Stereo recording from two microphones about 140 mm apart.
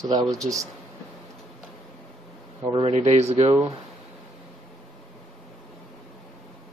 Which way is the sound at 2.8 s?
50° right (ahead or behind).